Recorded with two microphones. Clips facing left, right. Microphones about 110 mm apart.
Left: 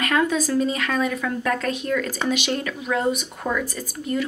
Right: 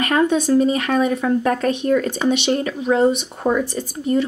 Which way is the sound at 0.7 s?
40° right (ahead or behind).